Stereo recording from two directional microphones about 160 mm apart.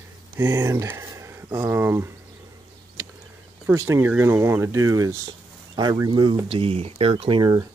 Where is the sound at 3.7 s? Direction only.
15° right (ahead or behind).